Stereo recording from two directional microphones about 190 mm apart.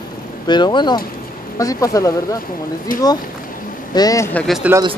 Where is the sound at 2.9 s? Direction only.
45° left (ahead or behind).